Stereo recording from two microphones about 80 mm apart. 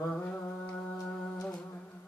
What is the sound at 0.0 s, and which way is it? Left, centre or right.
Mantra, centre.